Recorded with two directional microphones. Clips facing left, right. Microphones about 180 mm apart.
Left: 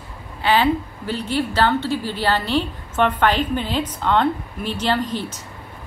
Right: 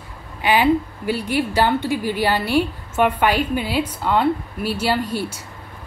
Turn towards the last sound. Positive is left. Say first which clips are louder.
# right 1 dB
turn(degrees=-10)  # may be behind; listen again after turning